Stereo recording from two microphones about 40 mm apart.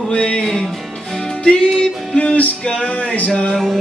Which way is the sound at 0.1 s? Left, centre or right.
Left.